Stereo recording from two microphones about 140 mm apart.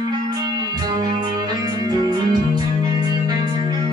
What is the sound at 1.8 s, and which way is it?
Music, 30° right (ahead or behind).